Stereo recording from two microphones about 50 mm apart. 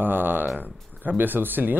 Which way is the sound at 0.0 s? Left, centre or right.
Right.